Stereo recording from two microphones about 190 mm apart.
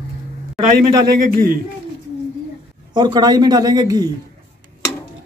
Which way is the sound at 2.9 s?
20° right (ahead or behind).